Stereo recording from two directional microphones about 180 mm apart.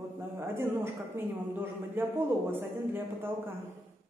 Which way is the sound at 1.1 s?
10° right (ahead or behind).